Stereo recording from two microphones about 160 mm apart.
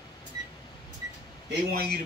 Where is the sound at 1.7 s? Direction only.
75° right (ahead or behind).